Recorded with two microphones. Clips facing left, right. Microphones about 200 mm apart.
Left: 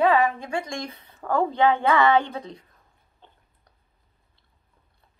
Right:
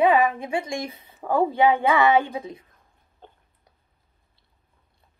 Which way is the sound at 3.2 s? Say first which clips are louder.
Right 6 dB; 50° right (ahead or behind).